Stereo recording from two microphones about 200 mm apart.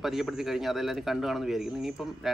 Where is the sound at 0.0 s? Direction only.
Centre (ahead or behind).